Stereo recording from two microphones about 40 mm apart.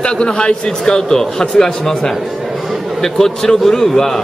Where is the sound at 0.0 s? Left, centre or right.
Left.